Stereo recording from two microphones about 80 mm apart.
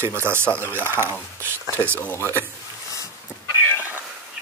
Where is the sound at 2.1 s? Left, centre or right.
Left.